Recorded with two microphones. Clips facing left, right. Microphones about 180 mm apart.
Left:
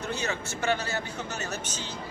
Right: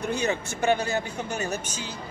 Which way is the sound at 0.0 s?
15° right (ahead or behind).